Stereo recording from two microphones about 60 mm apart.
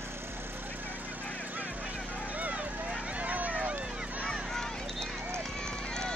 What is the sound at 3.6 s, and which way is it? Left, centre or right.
Run, centre.